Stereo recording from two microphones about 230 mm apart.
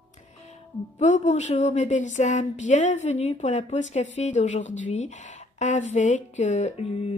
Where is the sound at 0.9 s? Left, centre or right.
Left.